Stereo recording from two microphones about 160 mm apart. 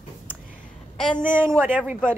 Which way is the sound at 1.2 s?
15° right (ahead or behind).